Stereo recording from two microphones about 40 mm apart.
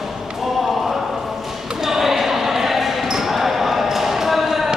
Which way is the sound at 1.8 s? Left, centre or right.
Centre.